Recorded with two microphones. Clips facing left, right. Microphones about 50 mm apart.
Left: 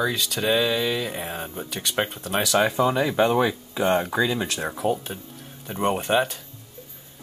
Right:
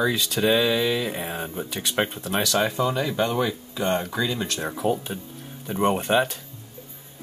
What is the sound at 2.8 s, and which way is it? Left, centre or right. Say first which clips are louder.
Speech: left 3 dB; left.